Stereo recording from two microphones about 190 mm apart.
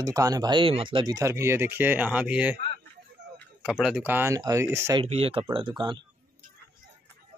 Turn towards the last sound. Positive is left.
turn(degrees=-25)  # may be behind; listen again after turning